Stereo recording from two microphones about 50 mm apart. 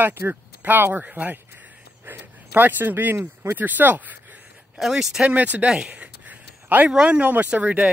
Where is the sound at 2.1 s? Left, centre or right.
Right.